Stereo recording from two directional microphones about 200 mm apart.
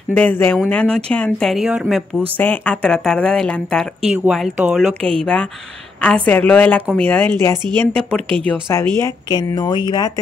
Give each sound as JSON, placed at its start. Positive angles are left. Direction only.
{"t": 0.1, "sound": "a woman's voice", "side_deg": 10}